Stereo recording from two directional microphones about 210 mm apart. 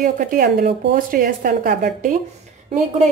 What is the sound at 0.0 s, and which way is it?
Speech, 40° right (ahead or behind).